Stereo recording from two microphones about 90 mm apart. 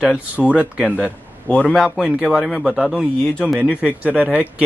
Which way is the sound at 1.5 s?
10° left (ahead or behind).